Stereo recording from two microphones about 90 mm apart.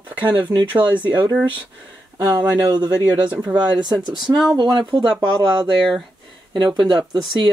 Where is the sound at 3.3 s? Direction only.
15° right (ahead or behind).